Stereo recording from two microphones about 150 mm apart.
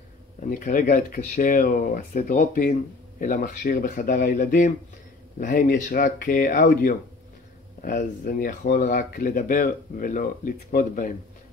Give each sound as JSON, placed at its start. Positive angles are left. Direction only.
{"t": 0.4, "sound": "speech", "side_deg": 65}